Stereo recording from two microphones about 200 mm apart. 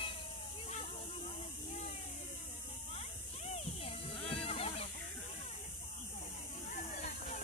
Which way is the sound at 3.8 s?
30° left (ahead or behind).